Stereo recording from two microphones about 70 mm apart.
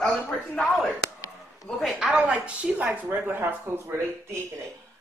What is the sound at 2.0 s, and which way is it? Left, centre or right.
A woman's voice, centre.